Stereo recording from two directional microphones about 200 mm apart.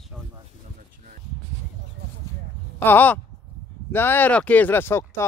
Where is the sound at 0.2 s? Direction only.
5° left (ahead or behind).